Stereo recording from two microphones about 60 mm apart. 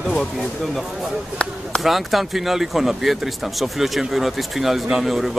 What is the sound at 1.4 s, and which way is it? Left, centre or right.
Speech, centre.